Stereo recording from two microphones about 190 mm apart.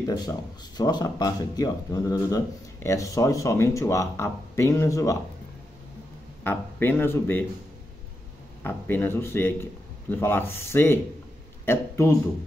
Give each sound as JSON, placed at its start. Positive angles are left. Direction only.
{"t": 0.0, "sound": "speech", "side_deg": 20}
{"t": 6.4, "sound": "speech", "side_deg": 10}
{"t": 8.6, "sound": "a man's voice", "side_deg": 10}